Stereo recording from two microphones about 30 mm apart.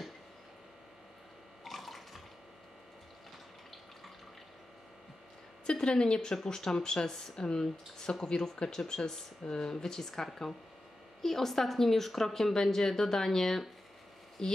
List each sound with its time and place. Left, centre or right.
1.6 s bathtub: centre
5.7 s a woman's voice: left